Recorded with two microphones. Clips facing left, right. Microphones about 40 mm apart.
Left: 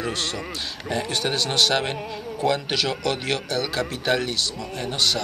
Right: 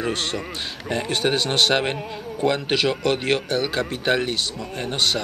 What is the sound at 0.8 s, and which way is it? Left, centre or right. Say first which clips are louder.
A man's voice: right 3 dB; right.